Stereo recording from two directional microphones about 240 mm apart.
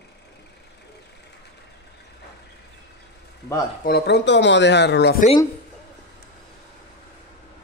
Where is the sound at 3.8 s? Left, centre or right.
Left.